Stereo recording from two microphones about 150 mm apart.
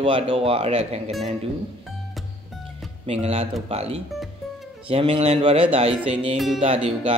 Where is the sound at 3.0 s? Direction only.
40° right (ahead or behind).